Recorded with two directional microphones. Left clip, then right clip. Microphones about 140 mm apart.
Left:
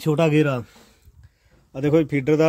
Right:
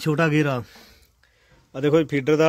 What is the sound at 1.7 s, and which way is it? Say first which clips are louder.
Speech: even; 10° left (ahead or behind).